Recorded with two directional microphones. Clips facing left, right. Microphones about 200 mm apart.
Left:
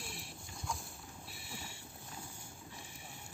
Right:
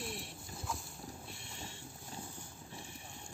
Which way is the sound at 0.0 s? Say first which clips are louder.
Right 5 dB; centre (ahead or behind).